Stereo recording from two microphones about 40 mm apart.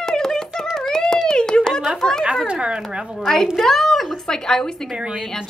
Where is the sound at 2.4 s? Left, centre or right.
Right.